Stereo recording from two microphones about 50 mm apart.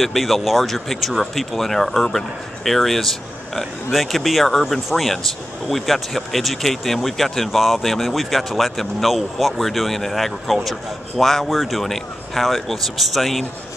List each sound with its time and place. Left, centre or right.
0.0 s speech: centre